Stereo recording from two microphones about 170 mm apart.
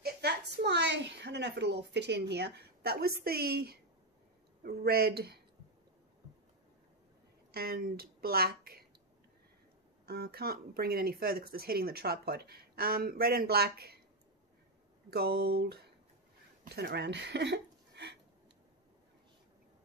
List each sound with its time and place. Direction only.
0.0 s a woman's voice: 80° right
7.5 s speech: 65° right (ahead or behind)
10.0 s speech: 65° right (ahead or behind)
15.0 s speech: 65° right (ahead or behind); by 18.1 s 90° right